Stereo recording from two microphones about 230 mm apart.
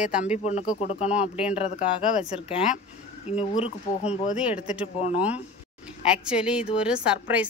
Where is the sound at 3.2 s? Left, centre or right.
Left.